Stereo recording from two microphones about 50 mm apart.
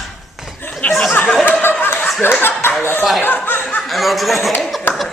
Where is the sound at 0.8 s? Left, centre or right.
Left.